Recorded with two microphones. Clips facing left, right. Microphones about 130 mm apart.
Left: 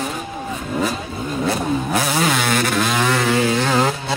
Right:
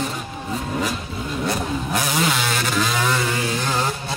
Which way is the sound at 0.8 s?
35° left (ahead or behind).